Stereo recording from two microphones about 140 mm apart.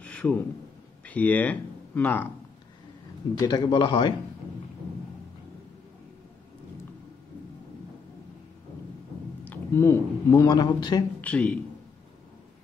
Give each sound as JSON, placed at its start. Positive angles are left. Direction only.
{"t": 0.0, "sound": "a sound", "side_deg": 10}
{"t": 1.0, "sound": "speech", "side_deg": 10}
{"t": 3.3, "sound": "a man's voice", "side_deg": 30}
{"t": 9.4, "sound": "a man's voice", "side_deg": 15}
{"t": 11.1, "sound": "speech", "side_deg": 10}